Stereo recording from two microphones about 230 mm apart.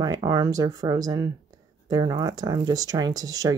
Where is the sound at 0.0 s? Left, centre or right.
Centre.